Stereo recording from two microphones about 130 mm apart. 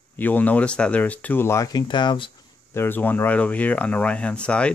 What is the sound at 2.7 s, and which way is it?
Speech, 15° left (ahead or behind).